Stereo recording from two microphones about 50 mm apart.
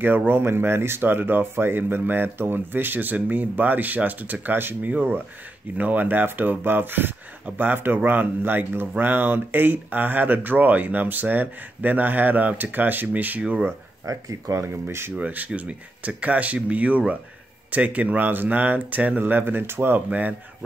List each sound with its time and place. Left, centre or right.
0.0 s speech: right
13.4 s speech: centre
14.6 s speech: right
15.1 s speech: right
20.1 s speech: right